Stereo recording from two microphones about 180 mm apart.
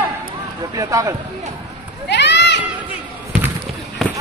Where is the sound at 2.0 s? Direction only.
75° left (ahead or behind).